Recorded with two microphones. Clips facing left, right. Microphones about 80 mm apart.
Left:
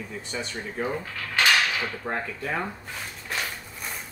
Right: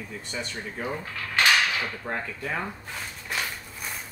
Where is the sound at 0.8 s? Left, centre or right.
Centre.